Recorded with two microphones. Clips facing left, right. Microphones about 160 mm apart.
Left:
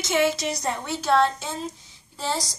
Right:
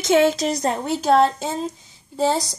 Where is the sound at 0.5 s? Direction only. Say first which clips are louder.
Right 6 dB; 45° right (ahead or behind).